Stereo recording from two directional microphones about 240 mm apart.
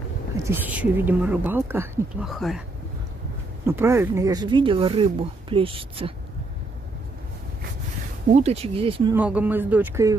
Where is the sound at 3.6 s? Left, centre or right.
Centre.